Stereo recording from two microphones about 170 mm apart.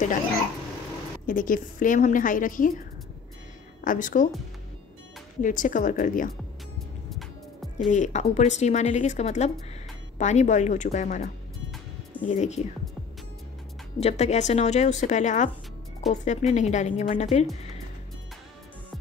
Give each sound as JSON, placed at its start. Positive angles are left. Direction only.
{"t": 1.2, "sound": "speech", "side_deg": 55}
{"t": 3.8, "sound": "speech", "side_deg": 50}
{"t": 5.4, "sound": "speech", "side_deg": 50}
{"t": 7.1, "sound": "music", "side_deg": 0}
{"t": 7.9, "sound": "speech", "side_deg": 45}
{"t": 11.7, "sound": "music", "side_deg": 10}
{"t": 12.3, "sound": "speech", "side_deg": 40}
{"t": 13.9, "sound": "speech", "side_deg": 40}
{"t": 16.0, "sound": "speech", "side_deg": 0}
{"t": 16.5, "sound": "speech", "side_deg": 45}